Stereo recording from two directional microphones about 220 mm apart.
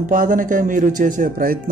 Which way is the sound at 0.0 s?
35° right (ahead or behind).